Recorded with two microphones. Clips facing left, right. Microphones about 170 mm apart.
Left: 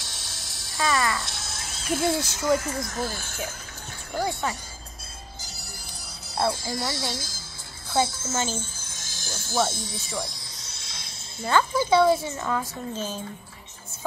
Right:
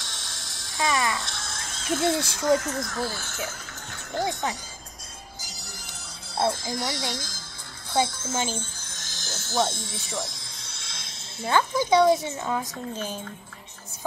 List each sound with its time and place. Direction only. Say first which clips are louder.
0.0 s a sound: right 1 dB; 5° left (ahead or behind)
0.7 s speech: left 1 dB; 20° right (ahead or behind)
1.2 s a sound: right 1 dB; 5° left (ahead or behind)
2.0 s speech: right 1 dB; 10° left (ahead or behind)
4.2 s a woman's voice: even; 20° right (ahead or behind)
5.5 s music: even; 20° right (ahead or behind)
6.5 s speech: even; 5° left (ahead or behind)
8.5 s music: left 1 dB; 5° left (ahead or behind)
9.9 s speech: left 1 dB; centre (ahead or behind)
11.5 s a woman's voice: even; 15° right (ahead or behind)